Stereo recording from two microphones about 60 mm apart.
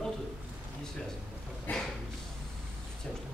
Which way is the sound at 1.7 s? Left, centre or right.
Left.